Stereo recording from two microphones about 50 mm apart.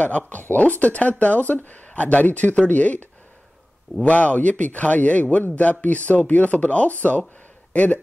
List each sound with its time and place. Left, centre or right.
0.3 s a man's voice: left